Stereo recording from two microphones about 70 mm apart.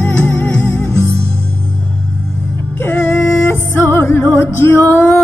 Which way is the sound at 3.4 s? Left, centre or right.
Left.